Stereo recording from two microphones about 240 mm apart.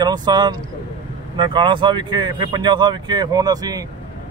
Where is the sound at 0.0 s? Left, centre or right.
Centre.